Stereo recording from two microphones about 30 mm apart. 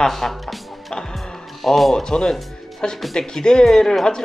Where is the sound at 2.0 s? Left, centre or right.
Left.